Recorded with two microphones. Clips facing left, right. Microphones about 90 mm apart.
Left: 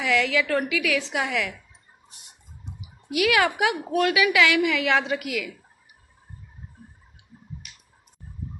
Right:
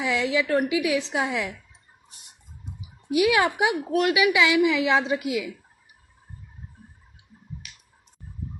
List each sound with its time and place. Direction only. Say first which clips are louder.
0.0 s a woman's voice: left 1 dB; 25° right (ahead or behind)
3.1 s a woman's voice: right 1 dB; 30° right (ahead or behind)